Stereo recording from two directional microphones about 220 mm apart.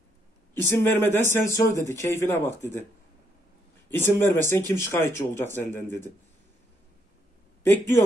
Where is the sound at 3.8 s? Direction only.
10° left (ahead or behind).